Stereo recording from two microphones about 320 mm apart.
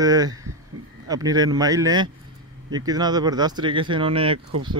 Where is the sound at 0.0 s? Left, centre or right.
Centre.